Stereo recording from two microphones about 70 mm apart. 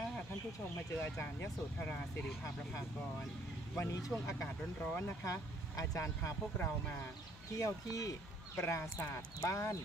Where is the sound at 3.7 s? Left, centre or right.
Left.